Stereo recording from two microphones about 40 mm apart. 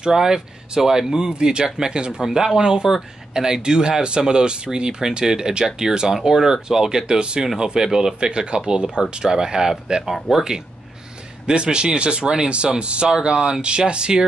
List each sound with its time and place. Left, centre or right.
0.0 s speech: centre